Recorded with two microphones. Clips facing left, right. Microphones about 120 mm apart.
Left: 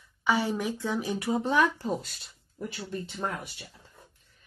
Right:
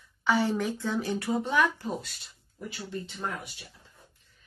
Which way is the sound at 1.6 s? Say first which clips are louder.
Left 1 dB; 40° left (ahead or behind).